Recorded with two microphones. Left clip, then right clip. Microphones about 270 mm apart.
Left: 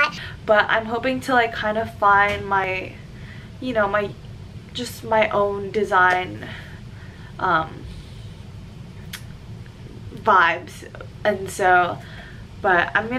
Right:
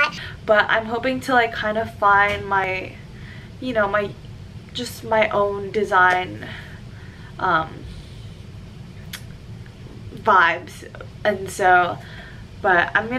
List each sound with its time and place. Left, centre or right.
0.0 s a woman's voice: centre
10.2 s a woman's voice: centre